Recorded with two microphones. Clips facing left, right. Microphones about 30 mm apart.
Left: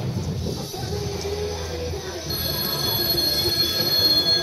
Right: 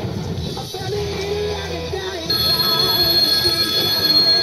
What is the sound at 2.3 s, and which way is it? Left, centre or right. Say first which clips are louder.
Music: right 10 dB; right.